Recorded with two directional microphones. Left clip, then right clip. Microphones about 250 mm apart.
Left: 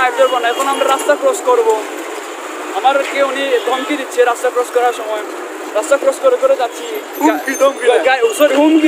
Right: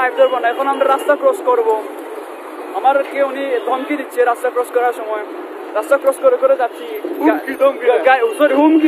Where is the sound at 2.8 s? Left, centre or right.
Centre.